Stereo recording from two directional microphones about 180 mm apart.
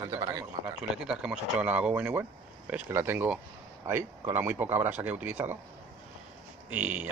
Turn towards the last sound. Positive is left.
turn(degrees=-10)  # may be behind; listen again after turning